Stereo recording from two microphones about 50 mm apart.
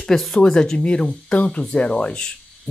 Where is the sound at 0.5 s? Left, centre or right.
Centre.